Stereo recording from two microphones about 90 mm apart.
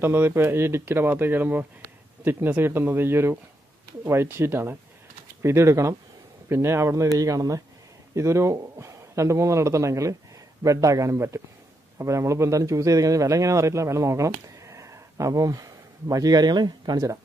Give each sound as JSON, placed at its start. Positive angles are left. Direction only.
{"t": 0.0, "sound": "a man's voice", "side_deg": -25}